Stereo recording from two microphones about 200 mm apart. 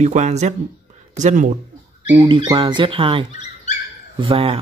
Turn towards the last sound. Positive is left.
turn(degrees=-25)  # may be behind; listen again after turning